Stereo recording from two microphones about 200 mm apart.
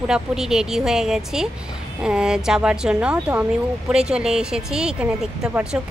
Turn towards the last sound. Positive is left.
turn(degrees=-5)  # may be behind; listen again after turning